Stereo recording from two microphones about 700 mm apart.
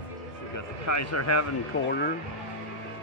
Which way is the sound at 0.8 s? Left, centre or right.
Left.